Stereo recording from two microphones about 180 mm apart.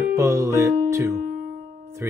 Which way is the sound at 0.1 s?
15° right (ahead or behind).